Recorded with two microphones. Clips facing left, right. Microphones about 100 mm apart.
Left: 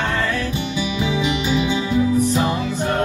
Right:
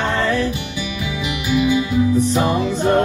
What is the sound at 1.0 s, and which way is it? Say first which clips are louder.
Music: left 5 dB; 25° left (ahead or behind).